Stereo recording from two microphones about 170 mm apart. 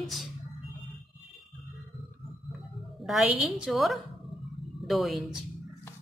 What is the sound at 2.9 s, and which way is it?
Speech, centre (ahead or behind).